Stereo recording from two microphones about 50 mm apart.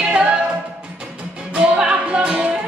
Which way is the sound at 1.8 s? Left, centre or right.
Right.